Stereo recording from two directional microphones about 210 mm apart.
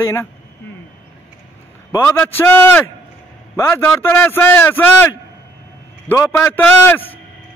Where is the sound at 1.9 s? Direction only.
10° left (ahead or behind).